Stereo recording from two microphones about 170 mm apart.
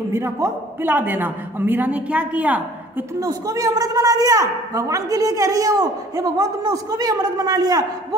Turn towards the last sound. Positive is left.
turn(degrees=-20)  # may be behind; listen again after turning